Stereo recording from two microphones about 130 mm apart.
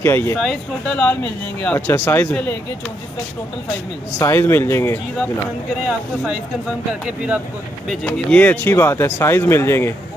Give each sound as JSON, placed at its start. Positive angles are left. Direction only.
{"t": 0.0, "sound": "speech", "side_deg": 20}
{"t": 0.4, "sound": "speech", "side_deg": 5}
{"t": 4.2, "sound": "speech", "side_deg": 20}
{"t": 7.9, "sound": "speech", "side_deg": 10}